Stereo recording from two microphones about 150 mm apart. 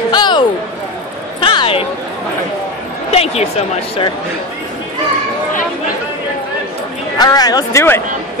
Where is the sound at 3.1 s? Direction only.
45° left (ahead or behind).